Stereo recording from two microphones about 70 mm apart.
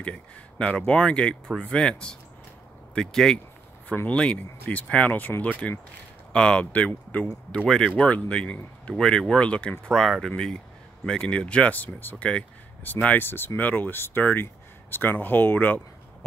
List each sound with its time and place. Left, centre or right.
0.0 s speech: centre
5.6 s speech: centre
7.2 s speech: centre; by 16.3 s left